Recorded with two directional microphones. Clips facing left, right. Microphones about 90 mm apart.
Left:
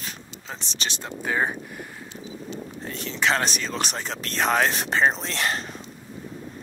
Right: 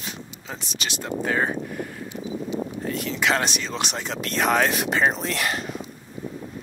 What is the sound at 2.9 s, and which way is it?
Speech, 35° left (ahead or behind).